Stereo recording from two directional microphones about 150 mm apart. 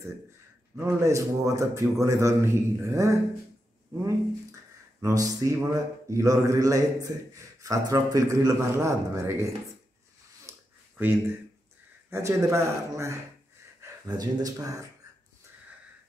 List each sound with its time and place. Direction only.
0.7 s a man's voice: 20° right (ahead or behind)
5.0 s a man's voice: 25° right (ahead or behind)
10.5 s a sound: 20° right (ahead or behind)
11.0 s a man's voice: 15° right (ahead or behind)